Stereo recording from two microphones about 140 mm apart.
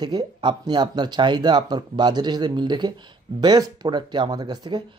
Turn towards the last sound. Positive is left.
turn(degrees=-30)  # may be behind; listen again after turning